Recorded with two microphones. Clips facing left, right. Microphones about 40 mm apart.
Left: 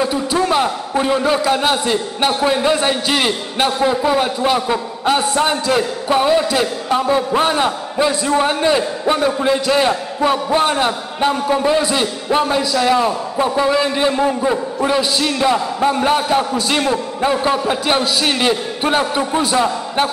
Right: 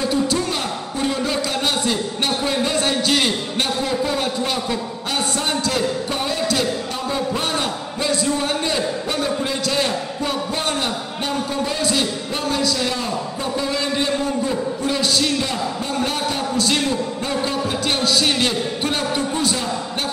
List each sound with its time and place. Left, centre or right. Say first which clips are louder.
0.0 s a man's voice: left 3 dB; centre
14.2 s a man's voice: left 5 dB; left
14.9 s a man's voice: left 3 dB; centre